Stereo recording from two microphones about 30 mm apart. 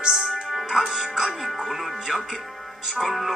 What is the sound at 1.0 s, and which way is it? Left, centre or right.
Speech, centre.